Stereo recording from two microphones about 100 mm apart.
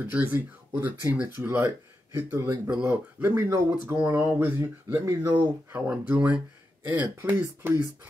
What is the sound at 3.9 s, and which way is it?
Speech, 15° right (ahead or behind).